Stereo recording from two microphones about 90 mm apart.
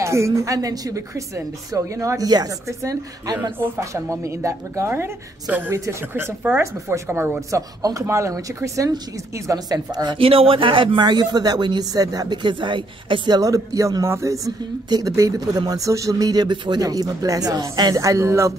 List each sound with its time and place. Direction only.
0.0 s a woman's voice: 30° right (ahead or behind)
10.1 s speech: 90° right; by 12.4 s 45° right (ahead or behind)
12.4 s speech: 60° right (ahead or behind)
13.4 s a woman's voice: 40° right (ahead or behind)
16.8 s a woman's voice: 40° right (ahead or behind)